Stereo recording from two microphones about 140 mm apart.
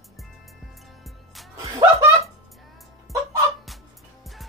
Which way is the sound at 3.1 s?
Centre (ahead or behind).